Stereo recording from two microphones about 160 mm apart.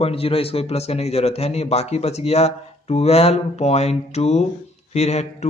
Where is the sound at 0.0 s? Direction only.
35° left (ahead or behind).